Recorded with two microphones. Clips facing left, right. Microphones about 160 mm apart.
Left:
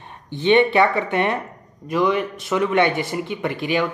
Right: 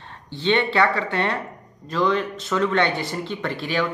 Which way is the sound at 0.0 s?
15° left (ahead or behind).